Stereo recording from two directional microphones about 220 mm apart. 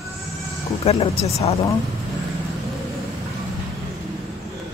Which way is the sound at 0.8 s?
25° left (ahead or behind).